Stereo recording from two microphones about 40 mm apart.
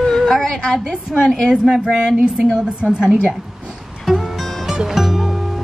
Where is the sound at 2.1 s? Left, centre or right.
Right.